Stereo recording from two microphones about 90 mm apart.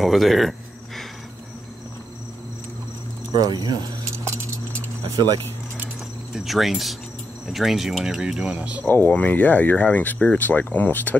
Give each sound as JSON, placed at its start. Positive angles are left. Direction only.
{"t": 0.0, "sound": "a sound", "side_deg": 0}
{"t": 3.3, "sound": "speech", "side_deg": -45}
{"t": 6.3, "sound": "speech", "side_deg": 0}
{"t": 8.8, "sound": "speech", "side_deg": 20}